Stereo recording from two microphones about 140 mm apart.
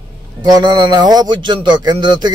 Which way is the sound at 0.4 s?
30° right (ahead or behind).